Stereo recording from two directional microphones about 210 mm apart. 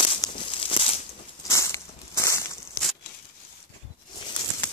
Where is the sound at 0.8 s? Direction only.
25° left (ahead or behind).